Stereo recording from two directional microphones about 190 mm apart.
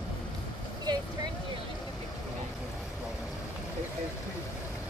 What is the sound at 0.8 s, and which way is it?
Vehicle, 20° right (ahead or behind).